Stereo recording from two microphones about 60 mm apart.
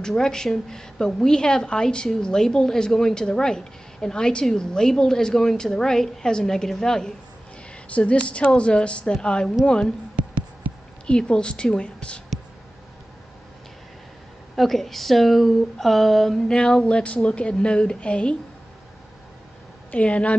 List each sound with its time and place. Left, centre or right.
0.0 s a woman's voice: centre
7.9 s a woman's voice: centre
10.1 s music: centre
11.1 s a woman's voice: centre
14.5 s a woman's voice: centre
19.9 s speech: left